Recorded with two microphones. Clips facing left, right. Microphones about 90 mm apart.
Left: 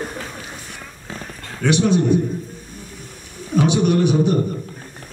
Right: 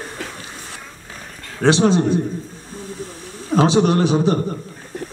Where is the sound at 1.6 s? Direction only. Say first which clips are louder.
Right 3 dB; 30° right (ahead or behind).